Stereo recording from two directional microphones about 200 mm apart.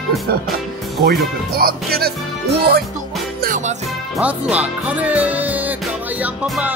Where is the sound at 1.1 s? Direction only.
50° right (ahead or behind).